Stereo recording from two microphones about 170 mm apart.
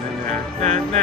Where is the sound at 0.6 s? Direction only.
40° right (ahead or behind).